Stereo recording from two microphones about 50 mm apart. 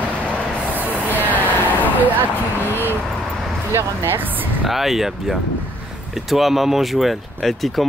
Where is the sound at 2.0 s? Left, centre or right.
Right.